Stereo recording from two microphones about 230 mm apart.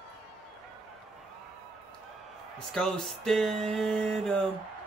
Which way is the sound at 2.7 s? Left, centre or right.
Centre.